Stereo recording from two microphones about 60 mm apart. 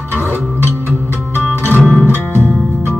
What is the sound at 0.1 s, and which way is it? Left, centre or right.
Music, right.